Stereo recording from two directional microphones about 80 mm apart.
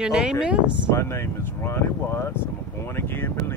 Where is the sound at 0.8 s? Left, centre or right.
Left.